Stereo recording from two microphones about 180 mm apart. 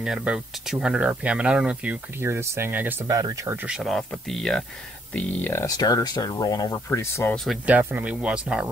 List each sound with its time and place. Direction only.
0.0 s speech: 5° right (ahead or behind); by 7.3 s 15° left (ahead or behind)
7.3 s speech: 5° right (ahead or behind)